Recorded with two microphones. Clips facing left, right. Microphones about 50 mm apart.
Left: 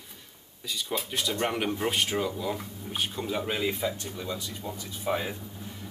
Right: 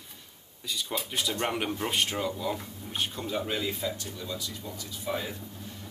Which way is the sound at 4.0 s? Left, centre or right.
Left.